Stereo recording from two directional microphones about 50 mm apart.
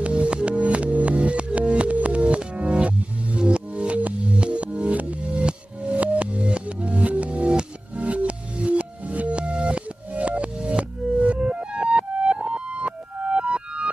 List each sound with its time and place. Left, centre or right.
0.0 s music: right